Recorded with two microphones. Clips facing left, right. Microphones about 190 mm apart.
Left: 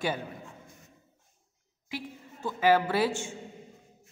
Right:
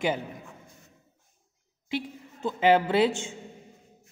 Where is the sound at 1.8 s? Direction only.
25° right (ahead or behind).